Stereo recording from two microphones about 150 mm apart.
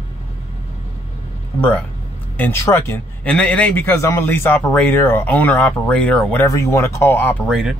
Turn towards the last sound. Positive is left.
turn(degrees=-5)  # may be behind; listen again after turning